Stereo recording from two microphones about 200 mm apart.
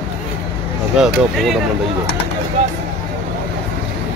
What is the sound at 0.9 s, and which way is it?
Speech, centre (ahead or behind).